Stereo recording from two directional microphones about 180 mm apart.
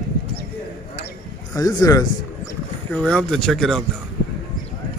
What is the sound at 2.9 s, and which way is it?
Speech, 5° left (ahead or behind).